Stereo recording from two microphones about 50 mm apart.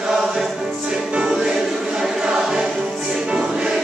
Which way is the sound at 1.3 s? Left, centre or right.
Centre.